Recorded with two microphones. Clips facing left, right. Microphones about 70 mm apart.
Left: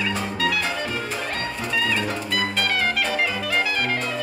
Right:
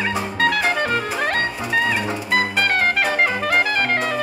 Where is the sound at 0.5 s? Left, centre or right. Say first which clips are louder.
Right 6 dB; right.